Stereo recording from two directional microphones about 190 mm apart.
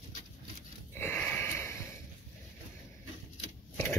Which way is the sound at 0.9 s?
10° left (ahead or behind).